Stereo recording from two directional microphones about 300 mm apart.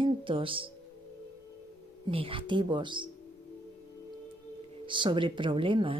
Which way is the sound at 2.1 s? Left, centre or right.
Centre.